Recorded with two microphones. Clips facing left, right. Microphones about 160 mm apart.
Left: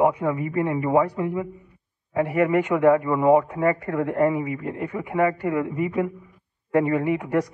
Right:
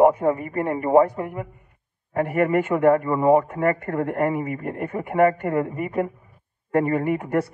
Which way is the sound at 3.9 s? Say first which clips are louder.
Left 1 dB; 50° right (ahead or behind).